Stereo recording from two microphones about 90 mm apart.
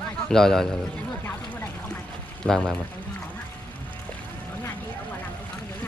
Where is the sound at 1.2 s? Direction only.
20° left (ahead or behind).